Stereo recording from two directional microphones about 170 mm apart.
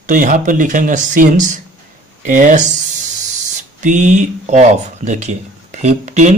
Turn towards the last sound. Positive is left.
turn(degrees=-45)  # may be behind; listen again after turning